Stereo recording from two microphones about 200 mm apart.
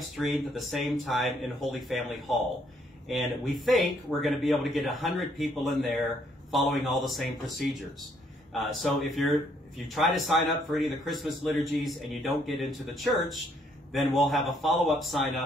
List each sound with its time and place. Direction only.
0.1 s a man's voice: centre (ahead or behind)